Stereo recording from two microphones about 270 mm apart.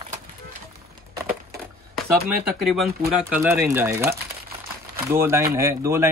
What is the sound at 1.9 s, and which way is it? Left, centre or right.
Speech, centre.